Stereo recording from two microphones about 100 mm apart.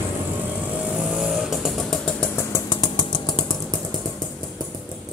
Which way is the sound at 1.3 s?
5° right (ahead or behind).